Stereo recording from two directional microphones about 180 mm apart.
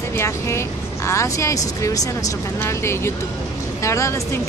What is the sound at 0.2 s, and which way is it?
Speech, 15° left (ahead or behind).